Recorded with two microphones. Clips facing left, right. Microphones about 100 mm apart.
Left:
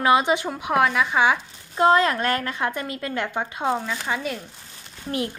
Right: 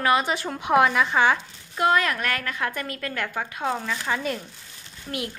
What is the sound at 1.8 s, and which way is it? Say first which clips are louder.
A woman's voice: left 4 dB; 30° left (ahead or behind).